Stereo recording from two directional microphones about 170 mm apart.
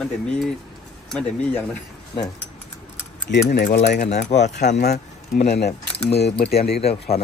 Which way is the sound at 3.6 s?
75° left (ahead or behind).